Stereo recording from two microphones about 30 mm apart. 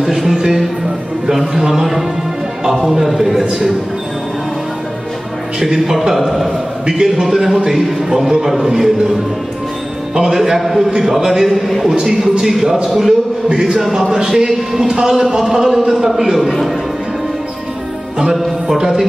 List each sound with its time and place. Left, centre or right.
0.0 s a sound: centre
1.5 s music: centre
2.8 s a man's voice: centre
3.4 s a man's voice: right
5.6 s a man's voice: centre
10.1 s a man's voice: right
10.4 s a man's voice: centre
18.7 s a man's voice: right